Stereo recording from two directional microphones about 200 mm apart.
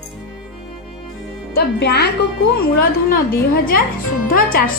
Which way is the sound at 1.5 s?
55° left (ahead or behind).